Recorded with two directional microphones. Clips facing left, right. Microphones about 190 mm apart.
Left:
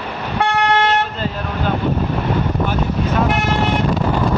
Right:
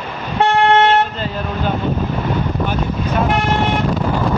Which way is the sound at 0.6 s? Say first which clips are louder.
Right 5 dB; 25° right (ahead or behind).